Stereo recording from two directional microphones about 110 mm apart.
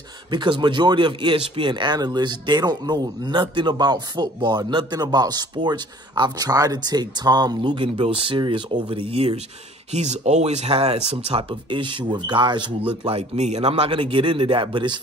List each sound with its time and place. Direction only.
0.3 s speech: 45° right (ahead or behind)
9.1 s speech: 65° right (ahead or behind)
9.9 s speech: 90° right; by 11.4 s 65° right (ahead or behind)
11.7 s speech: 45° right (ahead or behind)
13.0 s speech: 65° right (ahead or behind); by 15.0 s 45° right (ahead or behind)